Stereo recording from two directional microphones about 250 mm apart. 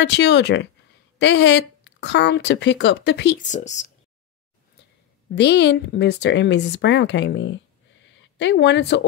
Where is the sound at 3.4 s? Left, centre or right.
Left.